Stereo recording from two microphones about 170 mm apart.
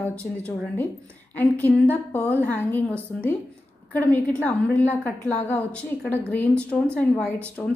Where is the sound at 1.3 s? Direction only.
10° left (ahead or behind).